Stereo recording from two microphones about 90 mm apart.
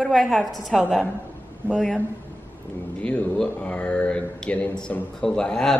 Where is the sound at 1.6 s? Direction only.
25° right (ahead or behind).